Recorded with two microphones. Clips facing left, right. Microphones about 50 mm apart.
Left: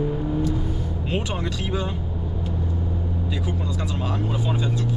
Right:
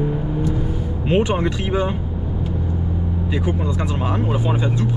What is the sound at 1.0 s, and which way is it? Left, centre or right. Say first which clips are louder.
Speech: right 10 dB; right.